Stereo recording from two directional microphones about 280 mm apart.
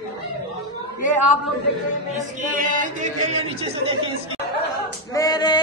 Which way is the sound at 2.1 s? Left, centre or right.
Right.